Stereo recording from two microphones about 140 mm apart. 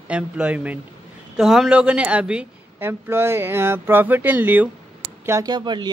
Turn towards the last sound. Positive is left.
turn(degrees=-30)  # may be behind; listen again after turning